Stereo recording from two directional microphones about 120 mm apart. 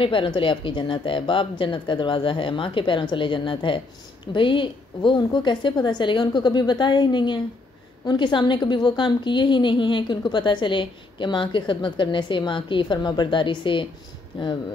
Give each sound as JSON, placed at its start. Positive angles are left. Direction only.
{"t": 0.0, "sound": "a woman's voice", "side_deg": 45}